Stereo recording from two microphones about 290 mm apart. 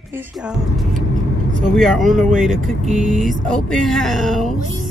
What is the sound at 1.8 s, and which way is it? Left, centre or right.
Speech, centre.